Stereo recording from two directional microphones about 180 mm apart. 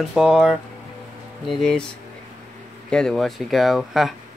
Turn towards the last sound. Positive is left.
turn(degrees=0)  # may be behind; listen again after turning